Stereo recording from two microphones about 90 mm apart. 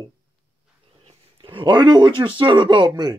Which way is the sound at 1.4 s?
70° right (ahead or behind).